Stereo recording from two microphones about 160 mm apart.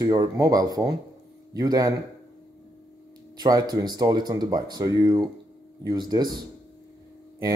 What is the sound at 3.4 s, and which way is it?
Speech, 25° right (ahead or behind).